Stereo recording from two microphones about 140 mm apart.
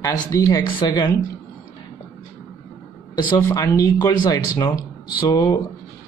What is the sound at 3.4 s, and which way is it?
Speech, 25° left (ahead or behind).